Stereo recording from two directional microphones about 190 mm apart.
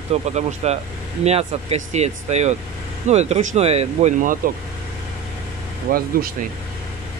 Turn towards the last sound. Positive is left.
turn(degrees=-50)  # may be behind; listen again after turning